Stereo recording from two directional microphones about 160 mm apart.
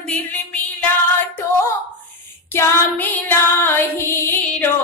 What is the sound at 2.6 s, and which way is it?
Female singing, 10° left (ahead or behind).